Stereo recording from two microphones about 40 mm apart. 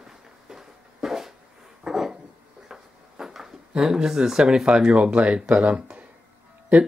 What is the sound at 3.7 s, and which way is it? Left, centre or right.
Speech, centre.